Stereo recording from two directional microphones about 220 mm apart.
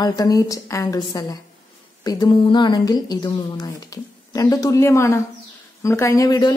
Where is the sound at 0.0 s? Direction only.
15° left (ahead or behind).